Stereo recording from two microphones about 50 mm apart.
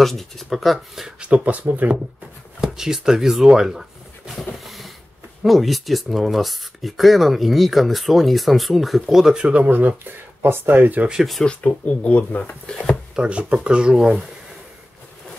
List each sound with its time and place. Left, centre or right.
0.0 s speech: centre
1.3 s speech: right
2.6 s speech: centre
4.4 s a sound: centre
5.4 s speech: centre
9.3 s speech: centre
9.6 s speech: right
11.4 s speech: left
13.1 s speech: centre